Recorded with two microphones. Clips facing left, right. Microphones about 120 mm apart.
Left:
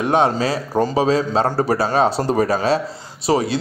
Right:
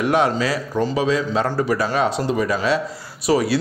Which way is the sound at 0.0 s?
30° left (ahead or behind).